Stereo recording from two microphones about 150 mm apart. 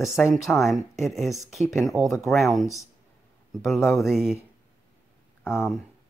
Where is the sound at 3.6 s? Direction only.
15° left (ahead or behind).